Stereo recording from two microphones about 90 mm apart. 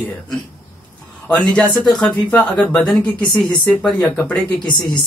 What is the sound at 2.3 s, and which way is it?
Speech, 15° left (ahead or behind).